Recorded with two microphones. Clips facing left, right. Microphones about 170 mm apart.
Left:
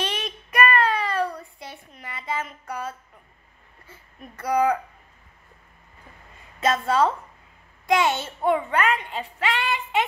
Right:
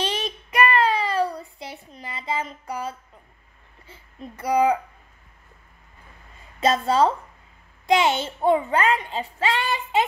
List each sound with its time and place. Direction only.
0.0 s child singing: 35° right (ahead or behind)
3.8 s a sound: 30° right (ahead or behind)
4.5 s a child's voice: 25° right (ahead or behind)
6.6 s a woman's voice: 30° right (ahead or behind)